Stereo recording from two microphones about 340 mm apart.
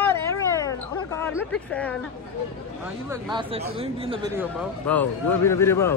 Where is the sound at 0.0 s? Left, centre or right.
Centre.